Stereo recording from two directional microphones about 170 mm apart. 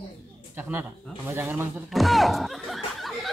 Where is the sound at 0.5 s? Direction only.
10° right (ahead or behind).